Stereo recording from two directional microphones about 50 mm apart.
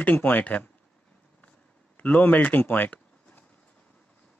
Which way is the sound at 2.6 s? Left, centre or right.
Left.